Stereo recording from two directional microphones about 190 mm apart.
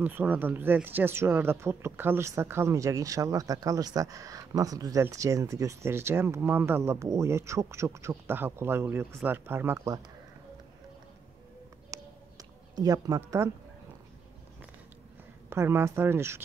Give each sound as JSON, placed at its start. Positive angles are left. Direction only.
{"t": 0.0, "sound": "speech", "side_deg": -10}
{"t": 11.9, "sound": "a sound", "side_deg": -20}
{"t": 15.5, "sound": "speech", "side_deg": -15}